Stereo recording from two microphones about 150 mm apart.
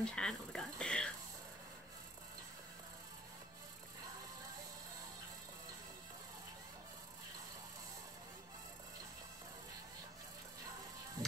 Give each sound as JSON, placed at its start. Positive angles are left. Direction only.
{"t": 0.0, "sound": "speech", "side_deg": 5}
{"t": 11.2, "sound": "music", "side_deg": -25}